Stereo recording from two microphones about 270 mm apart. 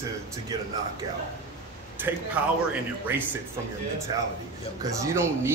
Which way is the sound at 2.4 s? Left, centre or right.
Centre.